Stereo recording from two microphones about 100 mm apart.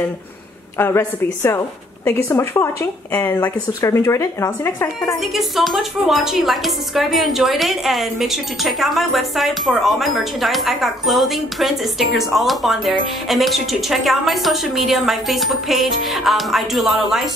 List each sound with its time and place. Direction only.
0.7 s speech: 25° left (ahead or behind)
5.2 s speech: centre (ahead or behind)